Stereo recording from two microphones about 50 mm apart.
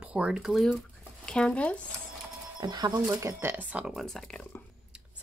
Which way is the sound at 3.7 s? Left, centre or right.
Right.